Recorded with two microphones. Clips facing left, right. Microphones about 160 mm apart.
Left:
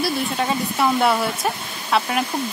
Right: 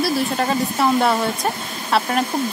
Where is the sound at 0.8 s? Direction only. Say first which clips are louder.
Even; centre (ahead or behind).